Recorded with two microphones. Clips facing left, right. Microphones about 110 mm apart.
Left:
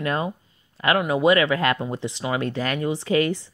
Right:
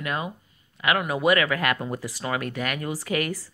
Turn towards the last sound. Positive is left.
turn(degrees=25)  # may be behind; listen again after turning